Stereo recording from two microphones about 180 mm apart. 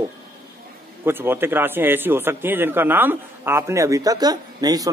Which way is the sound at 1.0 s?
10° right (ahead or behind).